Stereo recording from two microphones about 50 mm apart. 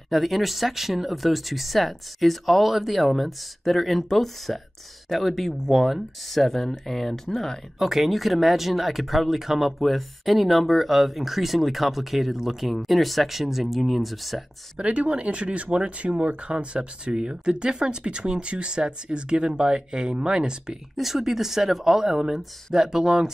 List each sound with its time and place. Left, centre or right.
0.1 s speech: centre
14.8 s speech: right
20.9 s speech: centre